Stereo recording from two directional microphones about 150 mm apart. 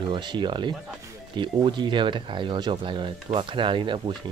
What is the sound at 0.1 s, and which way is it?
Speech, 30° right (ahead or behind).